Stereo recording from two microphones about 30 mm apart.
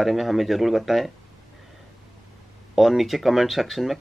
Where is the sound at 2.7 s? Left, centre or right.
Centre.